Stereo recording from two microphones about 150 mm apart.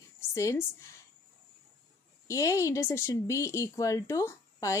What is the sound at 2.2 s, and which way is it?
A woman's voice, 20° left (ahead or behind).